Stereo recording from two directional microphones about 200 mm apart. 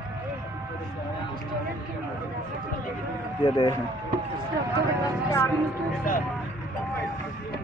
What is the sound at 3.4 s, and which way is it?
Speech, 25° left (ahead or behind).